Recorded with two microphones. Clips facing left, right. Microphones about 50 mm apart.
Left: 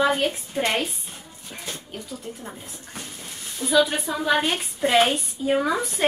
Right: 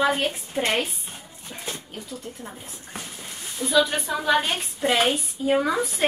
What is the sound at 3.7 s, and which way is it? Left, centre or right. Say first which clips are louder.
A woman's voice: left 1 dB; centre.